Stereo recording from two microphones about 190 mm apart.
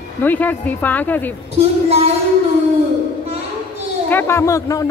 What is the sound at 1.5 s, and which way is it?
Speech, 35° right (ahead or behind).